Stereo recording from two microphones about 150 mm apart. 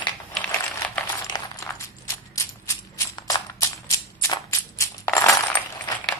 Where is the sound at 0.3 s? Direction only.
10° left (ahead or behind).